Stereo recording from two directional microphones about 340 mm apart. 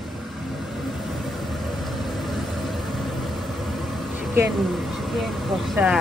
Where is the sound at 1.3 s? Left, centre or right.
Centre.